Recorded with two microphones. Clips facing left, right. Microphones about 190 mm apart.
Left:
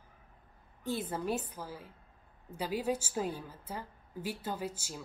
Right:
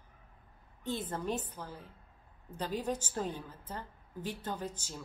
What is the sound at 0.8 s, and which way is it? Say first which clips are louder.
A woman's voice: left 1 dB; 10° left (ahead or behind).